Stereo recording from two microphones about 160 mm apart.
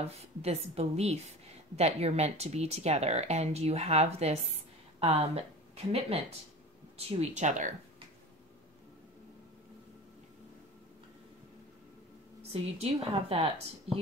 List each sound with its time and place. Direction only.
0.0 s a woman's voice: 40° right (ahead or behind)
12.4 s a woman's voice: 40° right (ahead or behind)